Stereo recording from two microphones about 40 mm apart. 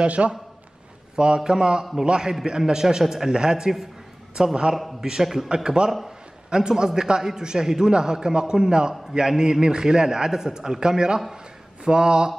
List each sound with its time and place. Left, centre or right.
0.0 s a man's voice: right
1.1 s a man's voice: right
5.5 s a man's voice: centre
5.9 s a man's voice: centre
6.5 s a man's voice: centre